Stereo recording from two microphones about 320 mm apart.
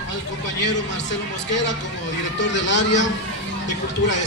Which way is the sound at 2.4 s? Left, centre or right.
Left.